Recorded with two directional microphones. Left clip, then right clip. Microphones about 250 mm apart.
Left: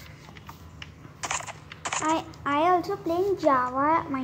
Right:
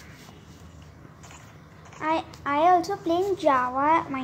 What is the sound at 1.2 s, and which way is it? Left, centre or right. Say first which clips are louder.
Crushing: left 18 dB; left.